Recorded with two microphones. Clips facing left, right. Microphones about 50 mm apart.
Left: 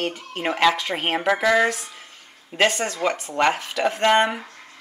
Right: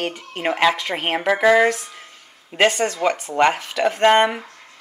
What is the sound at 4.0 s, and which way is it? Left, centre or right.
Speech, right.